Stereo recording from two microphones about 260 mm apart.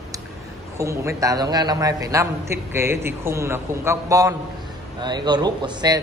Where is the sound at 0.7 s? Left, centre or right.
Centre.